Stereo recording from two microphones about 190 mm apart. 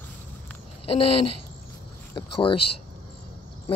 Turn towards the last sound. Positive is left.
turn(degrees=30)  # may be behind; listen again after turning